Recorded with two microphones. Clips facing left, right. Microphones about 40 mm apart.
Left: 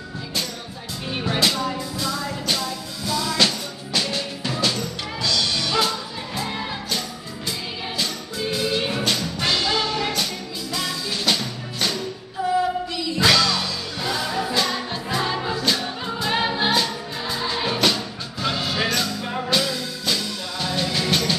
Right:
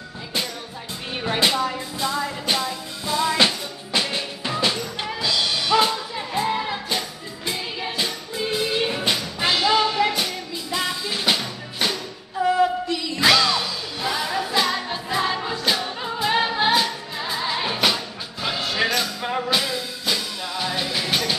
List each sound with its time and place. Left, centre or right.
1.4 s speech: right
1.8 s music: right
13.2 s music: centre